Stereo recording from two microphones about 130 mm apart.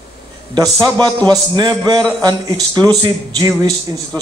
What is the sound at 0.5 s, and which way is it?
A man's voice, 25° right (ahead or behind).